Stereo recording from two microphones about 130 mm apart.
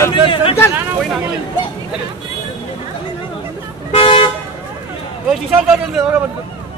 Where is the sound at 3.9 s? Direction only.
45° left (ahead or behind).